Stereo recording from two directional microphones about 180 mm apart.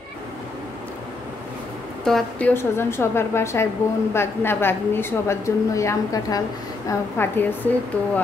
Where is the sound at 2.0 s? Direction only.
5° left (ahead or behind).